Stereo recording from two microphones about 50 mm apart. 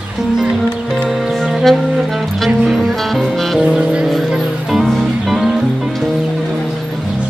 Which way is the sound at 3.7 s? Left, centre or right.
Centre.